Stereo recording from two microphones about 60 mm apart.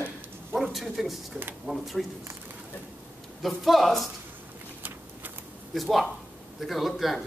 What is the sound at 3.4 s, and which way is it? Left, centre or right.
Speech, centre.